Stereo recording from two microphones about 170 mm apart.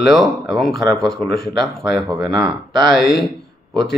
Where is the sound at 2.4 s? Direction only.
25° right (ahead or behind).